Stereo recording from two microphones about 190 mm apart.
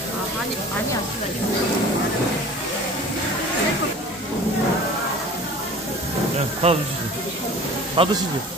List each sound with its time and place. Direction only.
6.6 s speech: 30° right (ahead or behind)
8.0 s speech: 30° right (ahead or behind)